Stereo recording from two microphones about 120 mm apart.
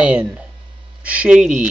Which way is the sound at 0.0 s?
10° right (ahead or behind).